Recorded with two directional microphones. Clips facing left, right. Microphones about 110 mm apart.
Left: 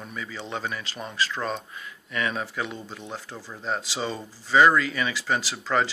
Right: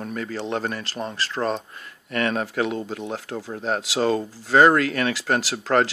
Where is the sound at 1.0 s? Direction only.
35° right (ahead or behind).